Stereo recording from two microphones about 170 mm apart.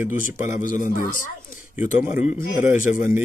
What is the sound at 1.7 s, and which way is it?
Speech, 10° right (ahead or behind).